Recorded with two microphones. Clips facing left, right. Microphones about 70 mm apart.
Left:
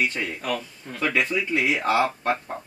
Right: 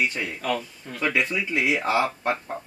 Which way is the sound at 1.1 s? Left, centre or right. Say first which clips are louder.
Left 2 dB; centre.